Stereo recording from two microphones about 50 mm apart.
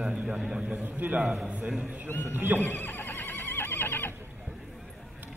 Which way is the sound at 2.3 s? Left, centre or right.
Right.